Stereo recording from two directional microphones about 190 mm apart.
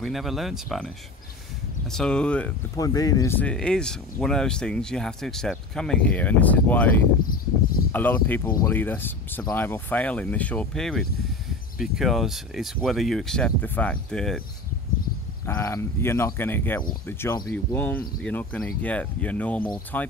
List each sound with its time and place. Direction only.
0.0 s speech: centre (ahead or behind)
2.7 s speech: 20° left (ahead or behind)
7.9 s speech: 10° left (ahead or behind)
15.4 s speech: 15° left (ahead or behind)